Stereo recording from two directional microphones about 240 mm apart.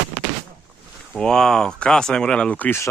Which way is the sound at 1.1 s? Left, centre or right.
Centre.